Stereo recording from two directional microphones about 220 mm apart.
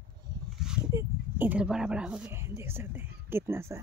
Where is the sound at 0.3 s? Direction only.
20° right (ahead or behind).